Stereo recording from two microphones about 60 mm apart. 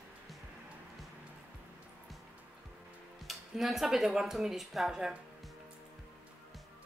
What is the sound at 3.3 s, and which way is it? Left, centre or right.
A woman's voice, centre.